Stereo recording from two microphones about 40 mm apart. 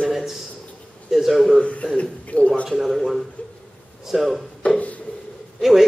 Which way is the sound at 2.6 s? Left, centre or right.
Centre.